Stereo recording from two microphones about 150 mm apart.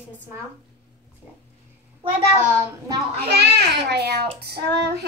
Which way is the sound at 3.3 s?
90° right.